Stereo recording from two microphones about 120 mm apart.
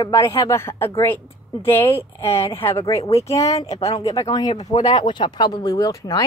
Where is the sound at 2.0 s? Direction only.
20° left (ahead or behind).